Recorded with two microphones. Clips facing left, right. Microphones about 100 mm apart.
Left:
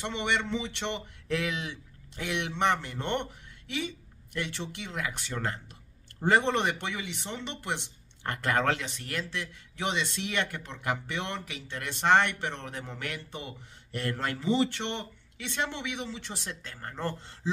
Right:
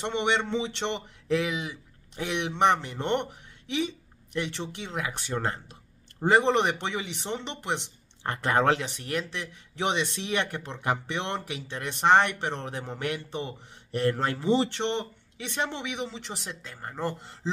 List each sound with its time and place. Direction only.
0.0 s speech: 25° right (ahead or behind)
1.4 s speech: 10° right (ahead or behind)
4.3 s speech: 20° right (ahead or behind)
6.2 s speech: 20° right (ahead or behind)
15.4 s speech: 20° right (ahead or behind)